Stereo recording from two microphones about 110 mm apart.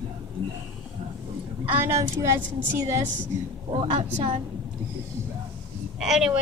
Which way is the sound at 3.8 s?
55° right (ahead or behind).